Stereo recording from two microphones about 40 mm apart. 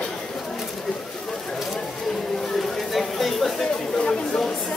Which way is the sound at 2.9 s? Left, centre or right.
Centre.